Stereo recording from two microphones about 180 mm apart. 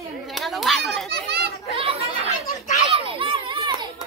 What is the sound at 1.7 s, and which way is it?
Speech, 35° right (ahead or behind).